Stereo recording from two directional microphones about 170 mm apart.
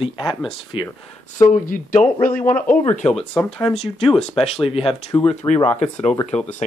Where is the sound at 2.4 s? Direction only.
10° left (ahead or behind).